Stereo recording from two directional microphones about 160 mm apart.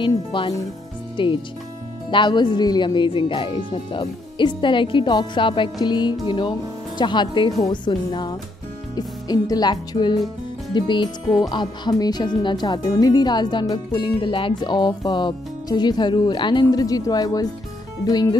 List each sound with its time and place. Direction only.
0.0 s speech: 30° left (ahead or behind)